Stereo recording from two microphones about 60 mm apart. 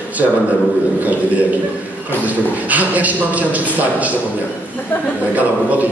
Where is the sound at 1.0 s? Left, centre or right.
Right.